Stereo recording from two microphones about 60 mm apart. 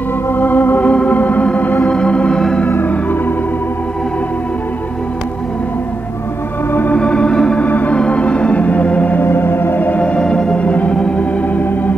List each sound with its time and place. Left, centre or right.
0.3 s organ: left; by 2.6 s centre
2.6 s organ: left
6.7 s organ: left
7.0 s organ: centre
7.6 s organ: left
9.2 s music: left